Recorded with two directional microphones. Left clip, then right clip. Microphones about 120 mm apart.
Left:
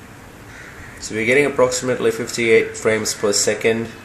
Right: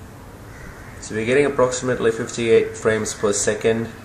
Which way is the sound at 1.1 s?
25° left (ahead or behind).